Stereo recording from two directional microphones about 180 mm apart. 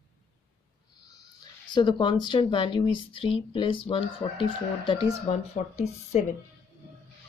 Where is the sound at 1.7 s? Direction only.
25° left (ahead or behind).